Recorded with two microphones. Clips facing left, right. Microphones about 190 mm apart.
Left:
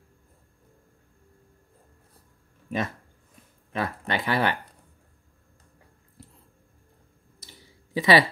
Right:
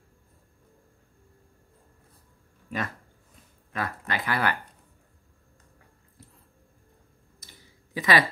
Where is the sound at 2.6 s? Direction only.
20° left (ahead or behind).